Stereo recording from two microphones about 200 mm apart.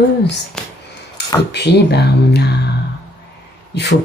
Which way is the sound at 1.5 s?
55° left (ahead or behind).